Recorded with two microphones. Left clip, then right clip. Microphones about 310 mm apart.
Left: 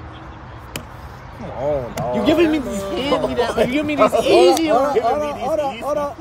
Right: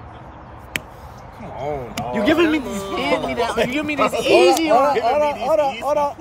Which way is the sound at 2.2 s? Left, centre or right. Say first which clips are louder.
Even; right.